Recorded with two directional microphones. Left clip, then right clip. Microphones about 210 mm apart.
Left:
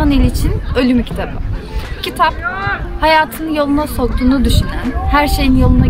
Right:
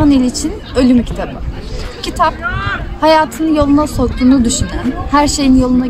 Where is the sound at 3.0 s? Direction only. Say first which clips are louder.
Right 2 dB; 10° left (ahead or behind).